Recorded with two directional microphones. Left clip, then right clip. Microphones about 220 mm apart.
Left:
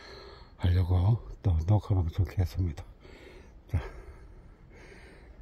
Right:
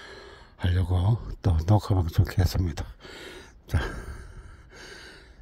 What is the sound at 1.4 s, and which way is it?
Speech, 20° right (ahead or behind).